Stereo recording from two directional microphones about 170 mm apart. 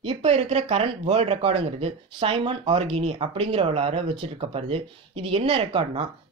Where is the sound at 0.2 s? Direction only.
40° right (ahead or behind).